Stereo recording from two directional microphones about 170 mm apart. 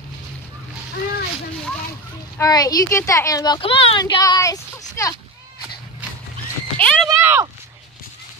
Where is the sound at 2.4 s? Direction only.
20° left (ahead or behind).